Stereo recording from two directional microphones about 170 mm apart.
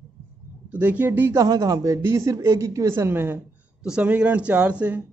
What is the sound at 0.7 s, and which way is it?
Speech, 10° right (ahead or behind).